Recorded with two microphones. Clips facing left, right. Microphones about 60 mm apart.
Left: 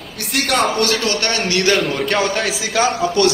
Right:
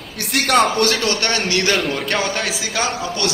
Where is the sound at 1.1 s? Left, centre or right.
Right.